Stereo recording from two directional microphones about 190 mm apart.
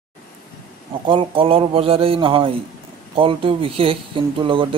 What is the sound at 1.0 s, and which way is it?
A man's voice, 25° right (ahead or behind).